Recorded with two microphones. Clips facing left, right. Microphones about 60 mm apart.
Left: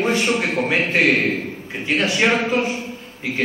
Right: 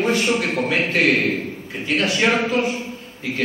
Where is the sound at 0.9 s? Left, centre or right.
Left.